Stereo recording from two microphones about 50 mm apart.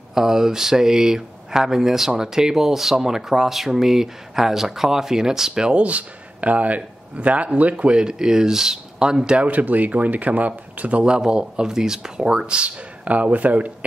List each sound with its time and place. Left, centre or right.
0.1 s speech: centre
9.5 s speech: right